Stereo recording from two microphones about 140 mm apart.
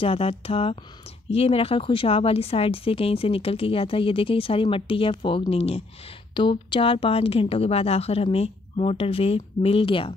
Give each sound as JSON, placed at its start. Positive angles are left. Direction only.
{"t": 0.0, "sound": "a woman's voice", "side_deg": 45}